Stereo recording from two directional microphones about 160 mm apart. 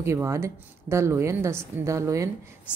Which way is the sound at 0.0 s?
20° right (ahead or behind).